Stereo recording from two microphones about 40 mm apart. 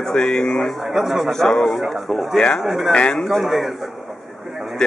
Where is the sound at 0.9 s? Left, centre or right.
Centre.